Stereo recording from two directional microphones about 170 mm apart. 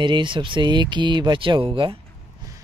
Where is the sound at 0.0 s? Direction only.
30° right (ahead or behind).